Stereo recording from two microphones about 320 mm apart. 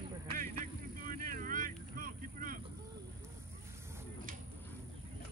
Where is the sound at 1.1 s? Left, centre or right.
Right.